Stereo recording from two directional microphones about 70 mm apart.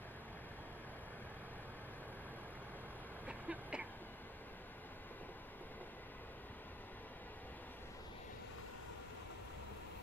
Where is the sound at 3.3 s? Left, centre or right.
Centre.